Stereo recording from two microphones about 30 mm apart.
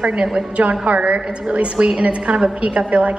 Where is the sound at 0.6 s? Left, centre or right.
Right.